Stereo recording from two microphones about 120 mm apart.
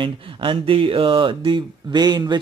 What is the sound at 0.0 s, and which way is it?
Speech, 45° right (ahead or behind).